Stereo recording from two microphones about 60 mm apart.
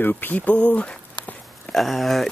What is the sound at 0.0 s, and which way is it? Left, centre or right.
Speech, left.